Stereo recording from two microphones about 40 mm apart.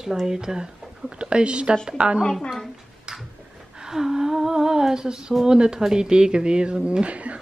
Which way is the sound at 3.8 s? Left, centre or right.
Centre.